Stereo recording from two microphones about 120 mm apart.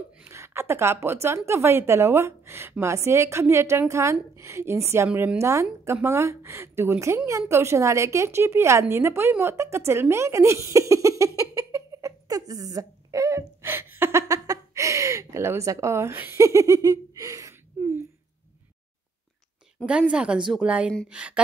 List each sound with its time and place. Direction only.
0.2 s a woman's voice: 20° right (ahead or behind)
19.9 s a woman's voice: 10° right (ahead or behind)